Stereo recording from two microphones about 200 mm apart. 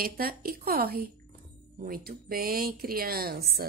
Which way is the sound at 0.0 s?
50° right (ahead or behind).